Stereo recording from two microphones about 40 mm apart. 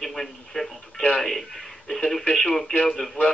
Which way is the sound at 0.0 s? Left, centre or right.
Centre.